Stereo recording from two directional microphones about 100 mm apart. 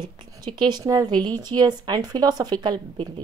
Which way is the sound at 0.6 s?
45° right (ahead or behind).